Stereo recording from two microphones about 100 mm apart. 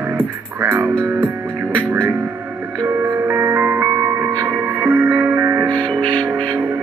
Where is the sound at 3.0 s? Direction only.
25° right (ahead or behind).